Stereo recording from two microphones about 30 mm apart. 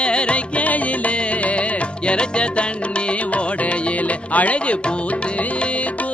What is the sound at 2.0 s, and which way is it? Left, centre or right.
Music, left.